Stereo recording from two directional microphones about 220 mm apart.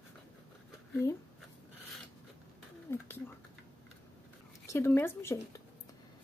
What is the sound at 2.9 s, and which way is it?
Speech, 10° left (ahead or behind).